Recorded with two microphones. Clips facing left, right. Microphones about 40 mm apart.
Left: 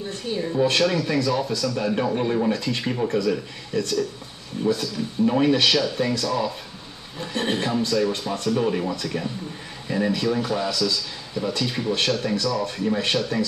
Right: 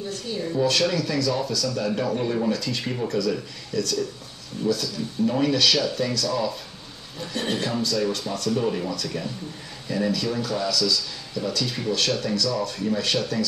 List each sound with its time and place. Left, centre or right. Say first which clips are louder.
0.1 s speech: left 2 dB; left